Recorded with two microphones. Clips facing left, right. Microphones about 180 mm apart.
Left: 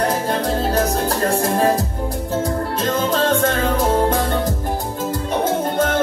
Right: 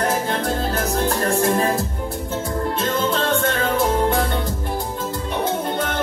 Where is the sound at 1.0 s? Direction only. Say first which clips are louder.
Even; 35° left (ahead or behind).